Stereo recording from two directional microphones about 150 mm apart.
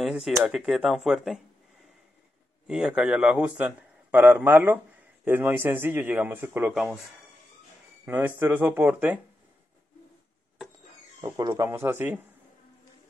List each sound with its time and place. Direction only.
0.0 s speech: 5° right (ahead or behind)
2.7 s a man's voice: 5° right (ahead or behind)
6.7 s speech: 5° right (ahead or behind)
8.0 s a man's voice: 10° right (ahead or behind)
11.1 s speech: 25° right (ahead or behind)